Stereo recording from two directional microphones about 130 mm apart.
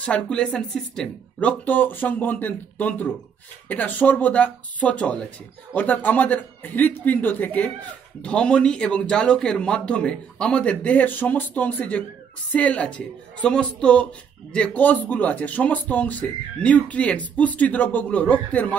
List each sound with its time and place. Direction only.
0.0 s speech: 10° left (ahead or behind)